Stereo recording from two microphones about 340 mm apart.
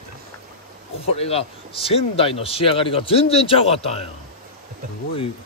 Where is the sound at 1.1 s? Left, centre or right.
Centre.